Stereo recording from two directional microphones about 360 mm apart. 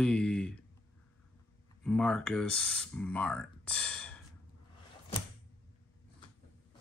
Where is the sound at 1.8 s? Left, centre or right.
Centre.